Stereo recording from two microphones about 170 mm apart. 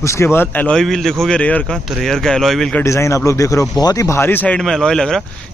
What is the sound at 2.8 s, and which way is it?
Speech, 15° left (ahead or behind).